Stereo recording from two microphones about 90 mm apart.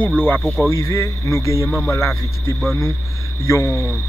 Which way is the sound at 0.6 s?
35° left (ahead or behind).